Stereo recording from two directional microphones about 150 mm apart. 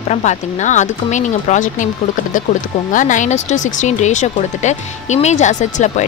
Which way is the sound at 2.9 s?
60° left (ahead or behind).